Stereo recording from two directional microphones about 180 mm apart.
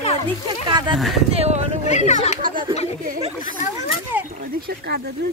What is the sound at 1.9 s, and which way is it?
Speech, 40° left (ahead or behind).